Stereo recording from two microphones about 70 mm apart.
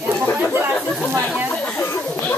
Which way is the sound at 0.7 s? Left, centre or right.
Centre.